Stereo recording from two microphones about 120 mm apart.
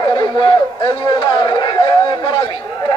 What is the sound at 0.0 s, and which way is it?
Chatter, 40° left (ahead or behind).